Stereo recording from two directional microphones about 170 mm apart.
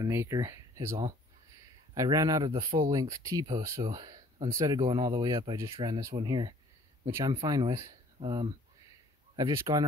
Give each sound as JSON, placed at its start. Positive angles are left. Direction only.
{"t": 0.0, "sound": "speech", "side_deg": -15}
{"t": 9.3, "sound": "speech", "side_deg": -20}